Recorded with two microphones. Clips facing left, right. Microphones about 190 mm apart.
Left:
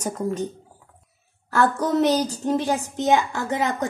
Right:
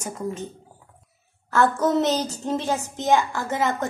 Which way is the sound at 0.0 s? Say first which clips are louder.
Left 4 dB; 40° left (ahead or behind).